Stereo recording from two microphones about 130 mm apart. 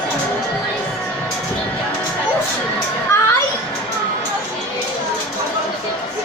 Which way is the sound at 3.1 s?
20° left (ahead or behind).